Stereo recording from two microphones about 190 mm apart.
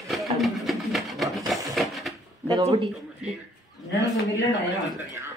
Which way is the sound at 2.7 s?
35° right (ahead or behind).